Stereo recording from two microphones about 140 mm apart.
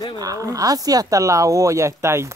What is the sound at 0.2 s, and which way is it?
Speech, 25° right (ahead or behind).